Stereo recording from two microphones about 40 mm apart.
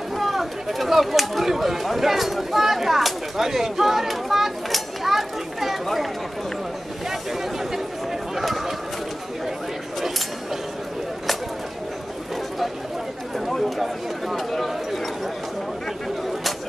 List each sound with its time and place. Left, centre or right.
0.1 s speech: centre
8.4 s a sound: centre
13.5 s speech: centre